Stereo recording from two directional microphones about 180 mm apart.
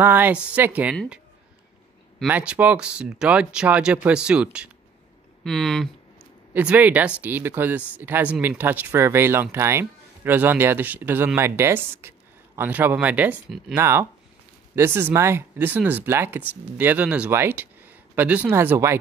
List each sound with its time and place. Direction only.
0.0 s speech: 10° right (ahead or behind)
2.2 s speech: 10° right (ahead or behind)